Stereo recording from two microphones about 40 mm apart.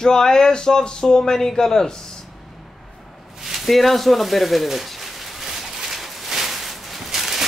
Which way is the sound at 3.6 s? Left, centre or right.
Centre.